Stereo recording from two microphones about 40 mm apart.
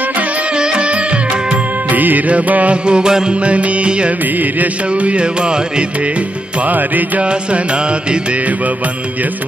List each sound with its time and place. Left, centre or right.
0.6 s music: right
1.9 s music: right
2.7 s music: right
3.4 s music: right
4.4 s music: right
6.6 s music: right
7.2 s music: right